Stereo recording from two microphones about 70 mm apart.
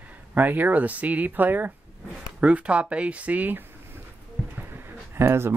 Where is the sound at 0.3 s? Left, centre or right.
Right.